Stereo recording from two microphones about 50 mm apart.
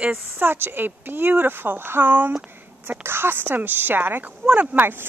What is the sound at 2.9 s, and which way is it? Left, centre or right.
A woman's voice, right.